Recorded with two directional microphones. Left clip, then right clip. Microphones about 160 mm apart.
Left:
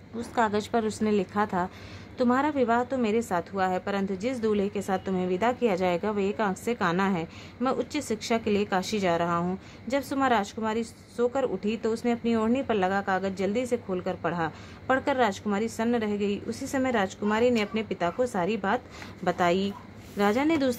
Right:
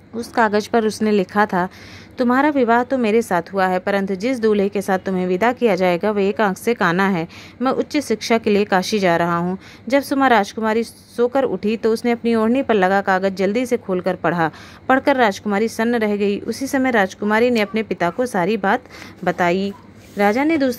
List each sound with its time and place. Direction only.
0.2 s a woman's voice: 30° right (ahead or behind)